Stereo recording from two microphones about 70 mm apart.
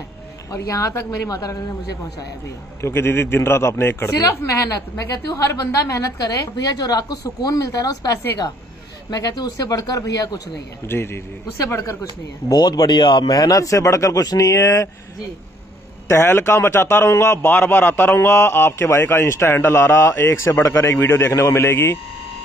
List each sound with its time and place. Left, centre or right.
0.6 s a woman's voice: left
2.8 s a man's voice: left
4.9 s a woman's voice: left
10.9 s a man's voice: left
12.4 s a woman's voice: left
16.1 s a man's voice: left
17.6 s a man's voice: left